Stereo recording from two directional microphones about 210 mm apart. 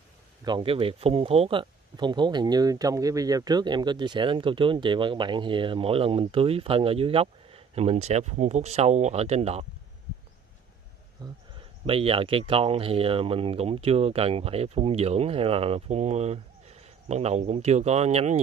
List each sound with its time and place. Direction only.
0.5 s speech: 25° right (ahead or behind)
11.2 s speech: 20° right (ahead or behind)